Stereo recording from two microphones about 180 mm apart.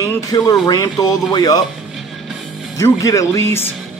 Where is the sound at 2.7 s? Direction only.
15° left (ahead or behind).